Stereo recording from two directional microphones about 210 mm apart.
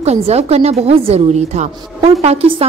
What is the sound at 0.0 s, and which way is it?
A woman's voice, 30° right (ahead or behind).